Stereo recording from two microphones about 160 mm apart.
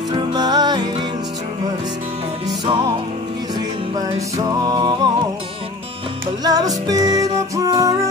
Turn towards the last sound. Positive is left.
turn(degrees=-20)  # may be behind; listen again after turning